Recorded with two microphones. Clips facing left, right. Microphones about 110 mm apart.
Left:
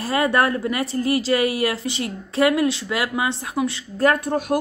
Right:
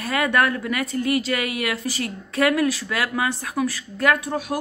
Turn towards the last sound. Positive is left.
turn(degrees=50)  # may be behind; listen again after turning